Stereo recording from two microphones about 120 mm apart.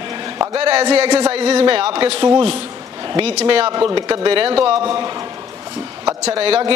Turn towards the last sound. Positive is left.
turn(degrees=-45)  # may be behind; listen again after turning